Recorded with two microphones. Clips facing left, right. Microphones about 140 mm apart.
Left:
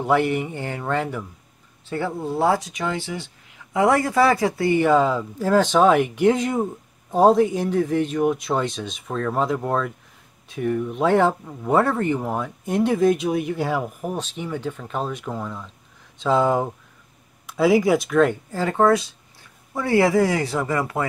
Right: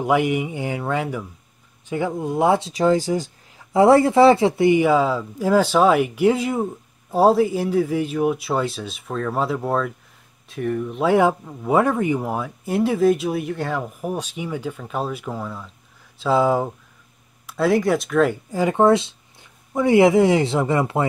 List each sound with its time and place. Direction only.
0.0 s speech: 10° right (ahead or behind); by 14.1 s 5° left (ahead or behind)
14.1 s speech: 10° right (ahead or behind)
18.5 s speech: 15° right (ahead or behind)